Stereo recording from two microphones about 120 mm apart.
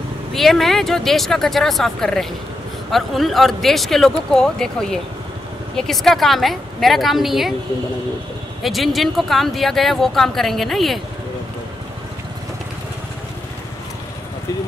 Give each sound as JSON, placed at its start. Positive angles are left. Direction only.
{"t": 0.3, "sound": "speech", "side_deg": 0}
{"t": 8.6, "sound": "speech", "side_deg": 0}